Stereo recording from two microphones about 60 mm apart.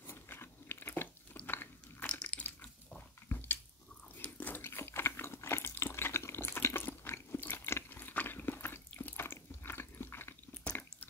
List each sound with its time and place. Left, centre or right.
0.0 s biting: left
2.0 s a sound: centre
3.3 s biting: left
5.7 s water: left
9.1 s biting: left